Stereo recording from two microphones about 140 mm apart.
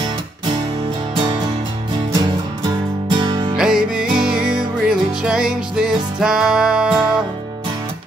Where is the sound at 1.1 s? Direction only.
35° right (ahead or behind).